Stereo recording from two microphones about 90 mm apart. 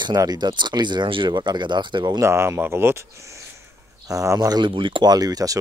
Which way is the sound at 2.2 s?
30° right (ahead or behind).